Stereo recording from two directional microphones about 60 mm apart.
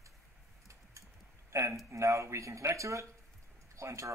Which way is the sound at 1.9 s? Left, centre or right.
Right.